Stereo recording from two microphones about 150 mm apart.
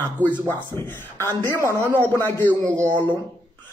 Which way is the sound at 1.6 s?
15° right (ahead or behind).